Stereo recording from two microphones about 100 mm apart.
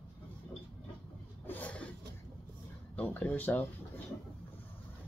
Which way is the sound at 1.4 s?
15° left (ahead or behind).